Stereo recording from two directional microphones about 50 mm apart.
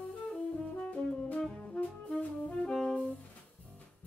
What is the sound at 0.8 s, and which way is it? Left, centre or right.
Brass instrument, left.